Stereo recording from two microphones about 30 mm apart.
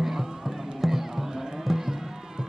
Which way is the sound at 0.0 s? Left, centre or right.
Centre.